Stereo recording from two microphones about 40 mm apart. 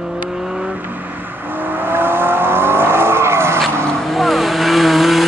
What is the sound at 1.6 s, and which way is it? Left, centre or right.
Vehicle, right.